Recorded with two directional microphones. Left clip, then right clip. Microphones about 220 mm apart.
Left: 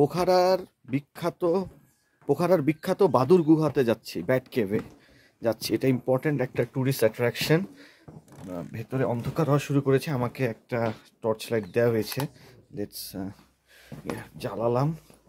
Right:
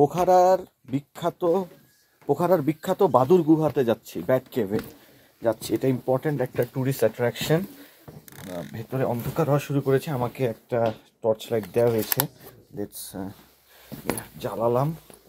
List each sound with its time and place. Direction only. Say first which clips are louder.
0.0 s speech: right 4 dB; 10° left (ahead or behind)
14.4 s speech: right 2 dB; 10° left (ahead or behind)